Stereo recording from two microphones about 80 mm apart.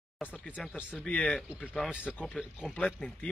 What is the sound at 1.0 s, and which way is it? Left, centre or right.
Speech, centre.